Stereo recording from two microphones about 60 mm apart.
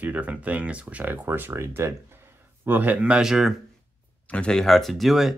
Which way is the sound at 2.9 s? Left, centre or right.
Centre.